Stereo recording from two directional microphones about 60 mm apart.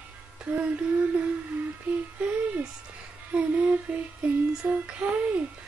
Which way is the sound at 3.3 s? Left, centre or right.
Right.